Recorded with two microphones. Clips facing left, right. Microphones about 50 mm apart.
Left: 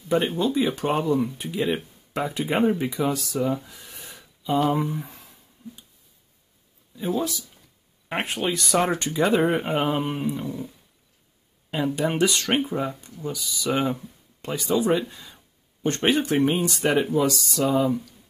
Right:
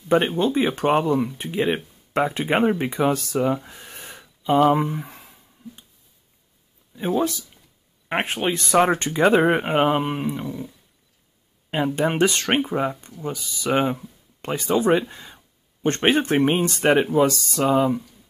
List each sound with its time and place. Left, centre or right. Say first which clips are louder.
0.4 s speech: right 2 dB; right
3.6 s a sound: right 4 dB; right
7.2 s speech: right 6 dB; right
8.1 s speech: right 3 dB; right
10.4 s dog: right 1 dB; centre
11.7 s speech: right 3 dB; right
13.7 s speech: right 3 dB; right
14.4 s speech: right 3 dB; right